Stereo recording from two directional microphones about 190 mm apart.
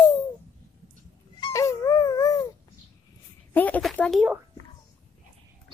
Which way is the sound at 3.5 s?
10° left (ahead or behind).